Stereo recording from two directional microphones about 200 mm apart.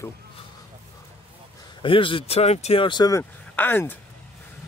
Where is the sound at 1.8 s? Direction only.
25° left (ahead or behind); by 3.9 s 10° left (ahead or behind).